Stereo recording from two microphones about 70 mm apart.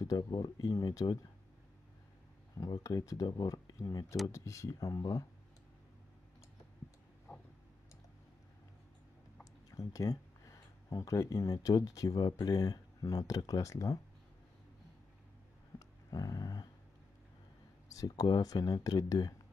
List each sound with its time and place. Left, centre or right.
0.0 s speech: left
2.5 s speech: left
4.3 s speech: left
9.4 s speech: left
13.0 s speech: left
16.1 s dog: left
17.9 s speech: left